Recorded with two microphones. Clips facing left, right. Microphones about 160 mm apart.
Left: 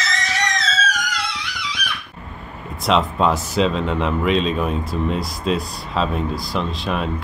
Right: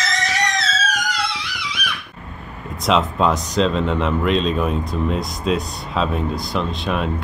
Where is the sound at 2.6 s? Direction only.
Centre (ahead or behind).